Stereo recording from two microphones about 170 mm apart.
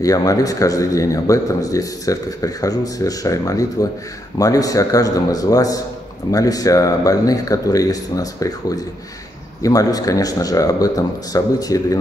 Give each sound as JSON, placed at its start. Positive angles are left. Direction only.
{"t": 0.0, "sound": "a man's voice", "side_deg": 20}